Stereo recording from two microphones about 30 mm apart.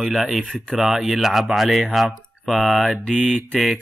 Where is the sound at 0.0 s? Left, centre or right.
Centre.